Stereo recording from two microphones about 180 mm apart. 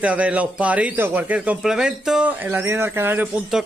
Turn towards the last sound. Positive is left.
turn(degrees=-5)  # may be behind; listen again after turning